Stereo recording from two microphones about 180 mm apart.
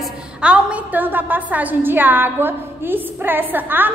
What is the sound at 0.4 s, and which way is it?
A woman's voice, 5° right (ahead or behind).